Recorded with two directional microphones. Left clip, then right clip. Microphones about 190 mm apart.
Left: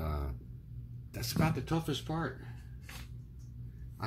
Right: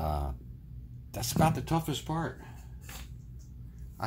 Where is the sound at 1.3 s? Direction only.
35° right (ahead or behind).